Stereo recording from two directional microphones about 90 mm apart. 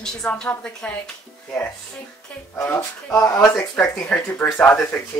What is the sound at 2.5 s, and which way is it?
Speech, 30° left (ahead or behind).